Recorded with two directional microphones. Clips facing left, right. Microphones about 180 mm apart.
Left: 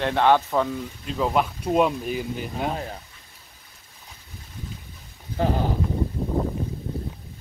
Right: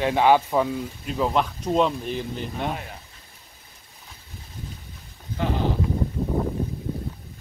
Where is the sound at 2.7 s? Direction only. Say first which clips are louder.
Left 2 dB; 35° left (ahead or behind).